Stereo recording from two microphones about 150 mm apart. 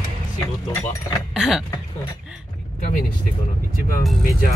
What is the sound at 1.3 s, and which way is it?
Speech, 5° right (ahead or behind).